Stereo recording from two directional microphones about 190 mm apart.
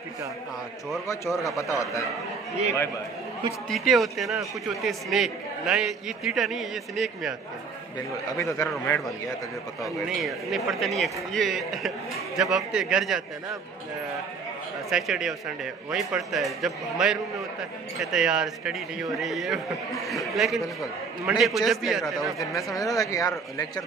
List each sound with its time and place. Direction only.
1.0 s speech: 15° left (ahead or behind)
3.6 s a man's voice: centre (ahead or behind)
8.4 s a man's voice: 10° left (ahead or behind)
14.9 s a man's voice: centre (ahead or behind)
22.9 s speech: 15° left (ahead or behind)